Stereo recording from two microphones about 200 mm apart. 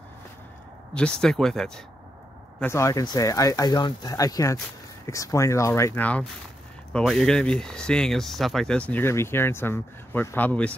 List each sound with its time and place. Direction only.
0.9 s speech: 5° left (ahead or behind)
2.6 s speech: 15° left (ahead or behind)